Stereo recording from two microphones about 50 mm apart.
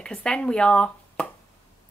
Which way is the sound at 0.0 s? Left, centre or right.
Centre.